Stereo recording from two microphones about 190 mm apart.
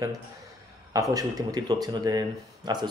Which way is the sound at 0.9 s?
20° right (ahead or behind).